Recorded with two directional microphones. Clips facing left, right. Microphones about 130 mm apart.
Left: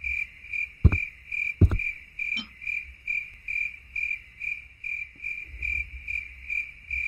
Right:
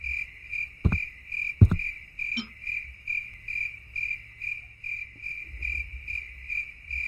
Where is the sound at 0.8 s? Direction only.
Centre (ahead or behind).